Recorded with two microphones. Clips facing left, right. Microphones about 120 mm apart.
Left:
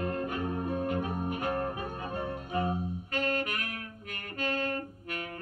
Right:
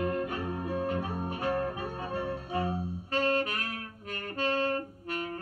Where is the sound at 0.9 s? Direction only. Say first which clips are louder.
Left 1 dB; 35° right (ahead or behind).